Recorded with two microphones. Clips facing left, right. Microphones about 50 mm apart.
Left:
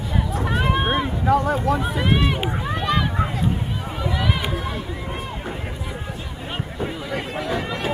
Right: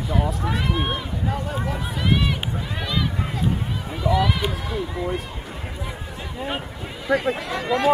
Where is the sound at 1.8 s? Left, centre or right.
Left.